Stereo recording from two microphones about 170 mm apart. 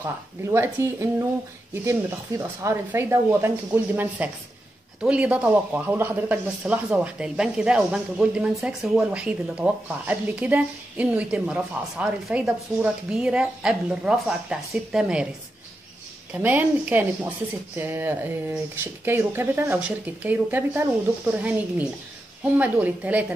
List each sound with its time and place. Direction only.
0.0 s speech: 15° right (ahead or behind)
16.3 s speech: 10° right (ahead or behind)